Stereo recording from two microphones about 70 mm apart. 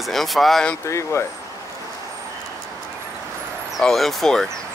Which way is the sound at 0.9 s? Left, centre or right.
Left.